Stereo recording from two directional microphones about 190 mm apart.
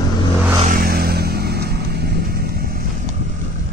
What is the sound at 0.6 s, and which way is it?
Vehicle, 50° right (ahead or behind).